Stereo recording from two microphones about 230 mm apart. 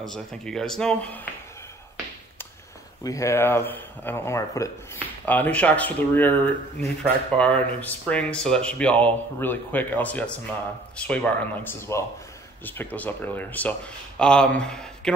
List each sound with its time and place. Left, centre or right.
0.0 s speech: centre
3.0 s speech: centre